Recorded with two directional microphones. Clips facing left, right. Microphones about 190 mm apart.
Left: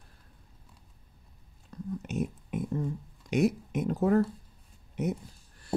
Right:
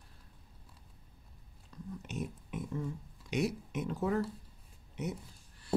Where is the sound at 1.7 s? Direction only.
45° left (ahead or behind).